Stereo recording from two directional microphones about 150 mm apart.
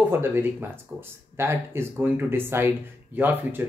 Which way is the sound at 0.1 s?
15° right (ahead or behind).